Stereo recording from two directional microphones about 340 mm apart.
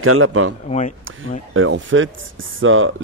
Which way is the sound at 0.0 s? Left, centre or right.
Right.